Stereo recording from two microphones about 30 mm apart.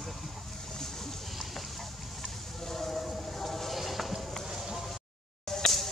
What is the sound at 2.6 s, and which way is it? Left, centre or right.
Vehicle, centre.